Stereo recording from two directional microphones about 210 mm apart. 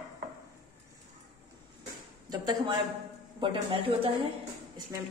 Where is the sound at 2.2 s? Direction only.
20° right (ahead or behind).